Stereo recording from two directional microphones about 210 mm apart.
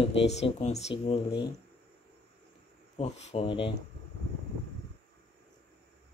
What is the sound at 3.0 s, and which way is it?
Speech, 30° left (ahead or behind).